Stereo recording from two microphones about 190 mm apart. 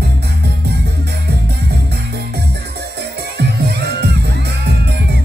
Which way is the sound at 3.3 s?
60° right (ahead or behind).